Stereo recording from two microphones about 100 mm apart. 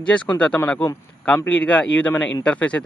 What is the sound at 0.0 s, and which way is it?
Speech, 10° left (ahead or behind).